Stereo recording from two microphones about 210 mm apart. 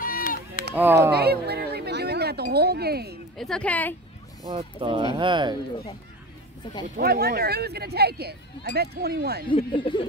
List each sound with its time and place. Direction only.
0.0 s chop: 40° left (ahead or behind)
0.7 s speech: 10° right (ahead or behind)
1.1 s wind chime: 50° right (ahead or behind)
3.3 s speech: 5° left (ahead or behind)
4.4 s speech: 25° right (ahead or behind)
7.0 s speech: 50° right (ahead or behind)
9.5 s speech: 25° left (ahead or behind)